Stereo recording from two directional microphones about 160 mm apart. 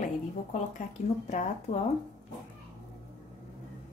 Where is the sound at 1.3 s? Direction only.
45° left (ahead or behind).